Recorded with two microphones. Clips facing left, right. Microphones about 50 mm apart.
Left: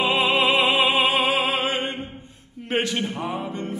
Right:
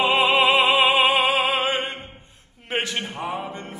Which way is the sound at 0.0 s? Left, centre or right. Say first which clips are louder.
Right 2 dB; centre.